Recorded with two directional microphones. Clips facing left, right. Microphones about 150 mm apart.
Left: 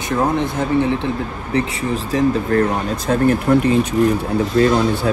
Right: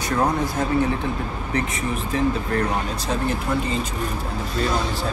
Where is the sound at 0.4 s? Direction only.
25° left (ahead or behind).